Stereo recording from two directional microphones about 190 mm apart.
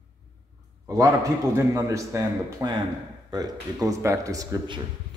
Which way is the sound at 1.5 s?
15° right (ahead or behind).